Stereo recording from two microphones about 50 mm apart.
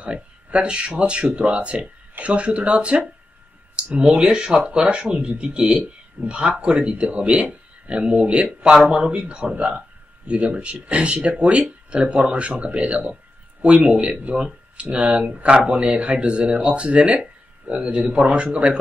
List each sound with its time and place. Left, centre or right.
0.0 s speech: right